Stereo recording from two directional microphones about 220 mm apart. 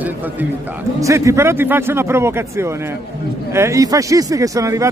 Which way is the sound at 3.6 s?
15° right (ahead or behind).